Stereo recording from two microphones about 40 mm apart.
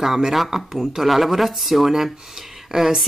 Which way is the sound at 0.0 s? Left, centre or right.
Centre.